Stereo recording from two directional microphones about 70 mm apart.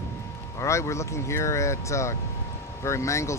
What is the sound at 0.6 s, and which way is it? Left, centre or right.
Speech, left.